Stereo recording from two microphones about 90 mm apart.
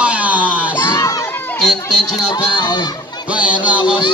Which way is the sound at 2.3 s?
55° left (ahead or behind).